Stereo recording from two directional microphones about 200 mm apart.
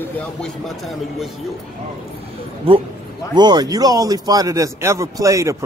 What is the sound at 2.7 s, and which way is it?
Speech, 25° right (ahead or behind).